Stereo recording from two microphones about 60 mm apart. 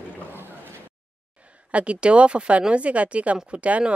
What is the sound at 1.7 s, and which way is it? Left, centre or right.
Speech, centre.